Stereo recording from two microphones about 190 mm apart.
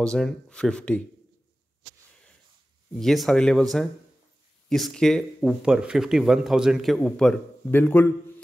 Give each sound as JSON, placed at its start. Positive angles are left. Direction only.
{"t": 0.0, "sound": "speech", "side_deg": 5}
{"t": 2.9, "sound": "speech", "side_deg": 0}
{"t": 4.6, "sound": "speech", "side_deg": 0}